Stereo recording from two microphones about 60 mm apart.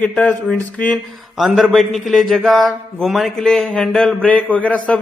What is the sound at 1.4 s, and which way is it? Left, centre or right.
A man's voice, centre.